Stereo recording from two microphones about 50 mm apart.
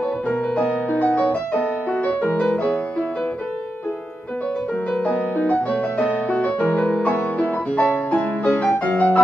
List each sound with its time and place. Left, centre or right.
0.8 s music: left
5.0 s music: left